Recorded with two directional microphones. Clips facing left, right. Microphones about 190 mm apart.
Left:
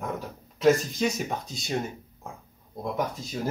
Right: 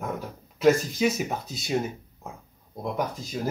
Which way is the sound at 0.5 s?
Centre (ahead or behind).